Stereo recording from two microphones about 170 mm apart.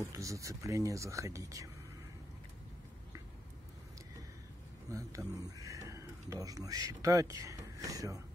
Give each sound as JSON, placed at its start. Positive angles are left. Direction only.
{"t": 0.1, "sound": "speech", "side_deg": -20}
{"t": 4.9, "sound": "speech", "side_deg": -20}